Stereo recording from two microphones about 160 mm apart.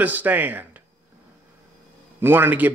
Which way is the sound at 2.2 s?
10° right (ahead or behind).